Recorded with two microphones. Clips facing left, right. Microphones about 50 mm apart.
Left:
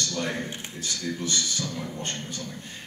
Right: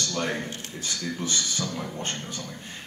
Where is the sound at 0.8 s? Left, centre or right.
Right.